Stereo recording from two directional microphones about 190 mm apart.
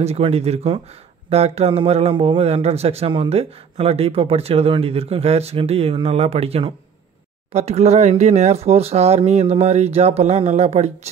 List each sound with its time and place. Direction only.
0.0 s a man's voice: 30° right (ahead or behind)